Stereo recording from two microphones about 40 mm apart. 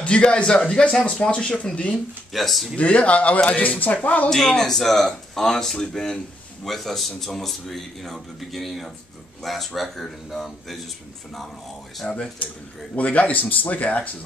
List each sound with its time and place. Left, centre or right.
0.0 s speech: left
2.3 s a man's voice: centre
2.7 s speech: left
4.6 s a man's voice: centre
12.1 s speech: left
12.9 s speech: left